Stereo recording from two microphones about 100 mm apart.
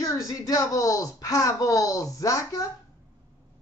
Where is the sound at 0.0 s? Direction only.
35° left (ahead or behind).